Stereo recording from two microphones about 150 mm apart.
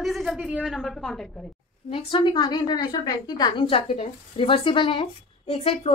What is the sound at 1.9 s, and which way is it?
A woman's voice, 35° left (ahead or behind).